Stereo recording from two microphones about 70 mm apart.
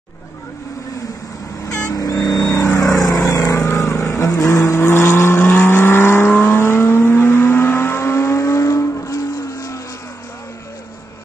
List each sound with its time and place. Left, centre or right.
1.9 s vehicle: left